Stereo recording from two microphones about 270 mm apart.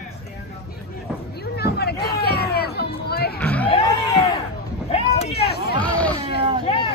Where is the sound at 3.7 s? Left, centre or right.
Left.